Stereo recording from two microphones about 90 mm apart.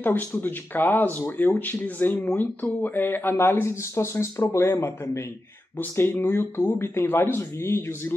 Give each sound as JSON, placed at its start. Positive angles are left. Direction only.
{"t": 0.0, "sound": "speech", "side_deg": 20}
{"t": 5.8, "sound": "speech", "side_deg": 20}